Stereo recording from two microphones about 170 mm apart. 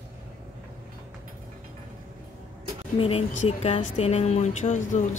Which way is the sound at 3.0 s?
30° left (ahead or behind).